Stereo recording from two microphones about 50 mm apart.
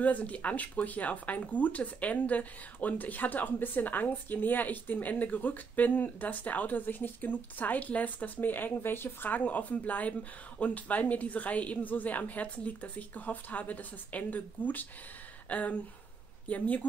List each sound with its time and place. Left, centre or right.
0.0 s speech: left
8.4 s speech: left
9.3 s speech: left